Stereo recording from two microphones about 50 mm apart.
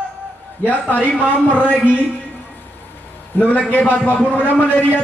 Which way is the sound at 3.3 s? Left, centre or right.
Left.